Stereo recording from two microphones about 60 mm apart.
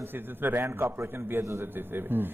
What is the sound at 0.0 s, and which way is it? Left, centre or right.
A man's voice, right.